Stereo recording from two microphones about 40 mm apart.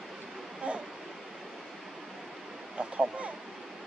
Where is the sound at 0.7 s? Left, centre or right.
Right.